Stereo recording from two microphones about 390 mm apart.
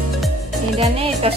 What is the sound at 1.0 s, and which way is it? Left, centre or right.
Speech, centre.